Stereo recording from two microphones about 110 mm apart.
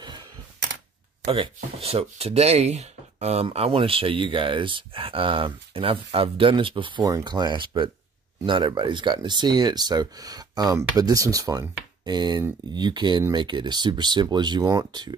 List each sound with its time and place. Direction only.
1.2 s speech: 65° right (ahead or behind)
7.1 s speech: 35° right (ahead or behind)